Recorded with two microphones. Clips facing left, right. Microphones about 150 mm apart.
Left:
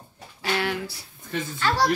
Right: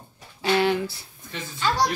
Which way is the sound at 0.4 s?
25° right (ahead or behind).